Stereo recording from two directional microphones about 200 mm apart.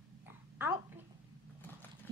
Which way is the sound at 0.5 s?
10° right (ahead or behind).